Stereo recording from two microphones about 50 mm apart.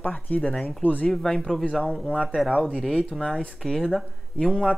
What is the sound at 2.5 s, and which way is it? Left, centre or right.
Speech, right.